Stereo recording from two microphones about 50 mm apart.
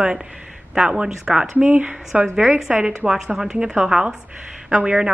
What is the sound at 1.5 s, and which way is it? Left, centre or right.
A woman's voice, right.